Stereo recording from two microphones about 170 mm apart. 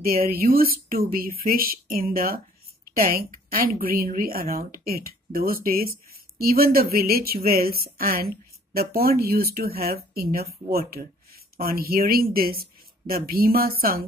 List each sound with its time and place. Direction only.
0.0 s speech: 60° right (ahead or behind)